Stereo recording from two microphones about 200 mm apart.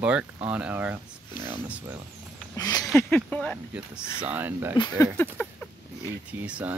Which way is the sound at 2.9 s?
5° left (ahead or behind).